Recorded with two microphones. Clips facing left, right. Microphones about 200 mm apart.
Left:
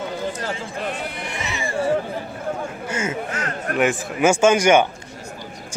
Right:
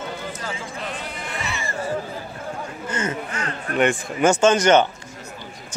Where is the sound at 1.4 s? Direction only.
15° left (ahead or behind).